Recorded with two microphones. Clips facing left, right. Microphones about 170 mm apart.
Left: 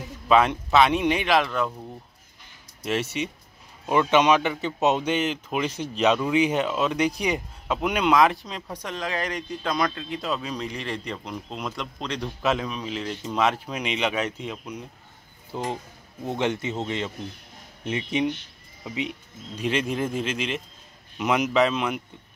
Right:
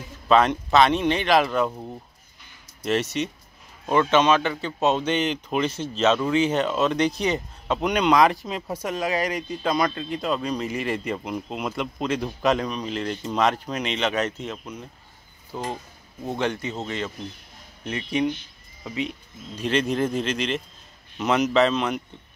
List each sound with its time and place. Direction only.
0.3 s speech: 5° left (ahead or behind)
2.8 s speech: 5° left (ahead or behind)